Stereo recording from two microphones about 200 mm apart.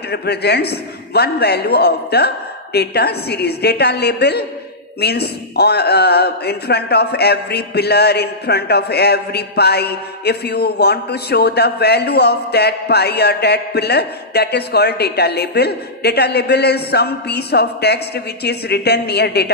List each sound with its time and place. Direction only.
0.1 s a man's voice: 55° left (ahead or behind)